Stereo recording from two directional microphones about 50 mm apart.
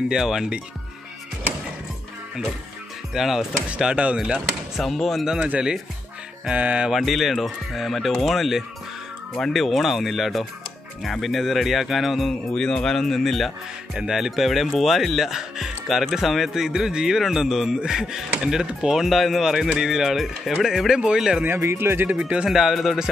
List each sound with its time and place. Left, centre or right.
0.1 s speech: centre
3.1 s speech: centre
3.8 s music: right
4.7 s speech: centre
5.2 s speech: centre
6.4 s music: right
6.9 s speech: centre
12.5 s speech: centre
13.9 s speech: centre
21.5 s speech: right
22.1 s speech: centre
22.5 s speech: centre